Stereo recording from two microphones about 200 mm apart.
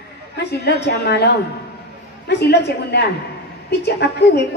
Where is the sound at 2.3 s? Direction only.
55° left (ahead or behind).